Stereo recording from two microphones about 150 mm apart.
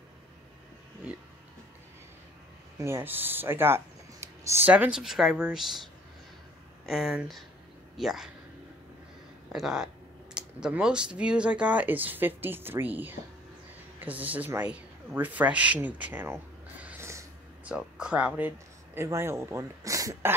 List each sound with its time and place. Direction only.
2.8 s speech: 15° right (ahead or behind)
6.9 s speech: 5° right (ahead or behind)
9.5 s speech: 5° right (ahead or behind)
16.8 s a sound: 20° right (ahead or behind)
17.6 s speech: 5° right (ahead or behind)